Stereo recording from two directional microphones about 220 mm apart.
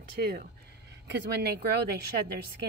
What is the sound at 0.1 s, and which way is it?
Speech, 45° right (ahead or behind).